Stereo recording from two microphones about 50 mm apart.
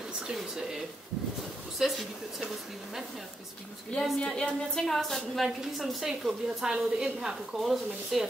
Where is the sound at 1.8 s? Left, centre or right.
Centre.